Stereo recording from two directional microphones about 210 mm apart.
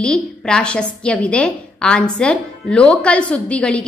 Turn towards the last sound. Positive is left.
turn(degrees=5)  # may be behind; listen again after turning